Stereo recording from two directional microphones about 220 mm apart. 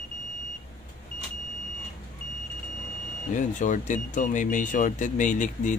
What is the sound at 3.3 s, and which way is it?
Speech, 35° left (ahead or behind).